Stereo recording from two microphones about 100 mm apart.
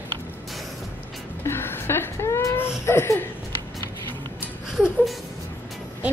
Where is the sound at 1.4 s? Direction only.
25° left (ahead or behind).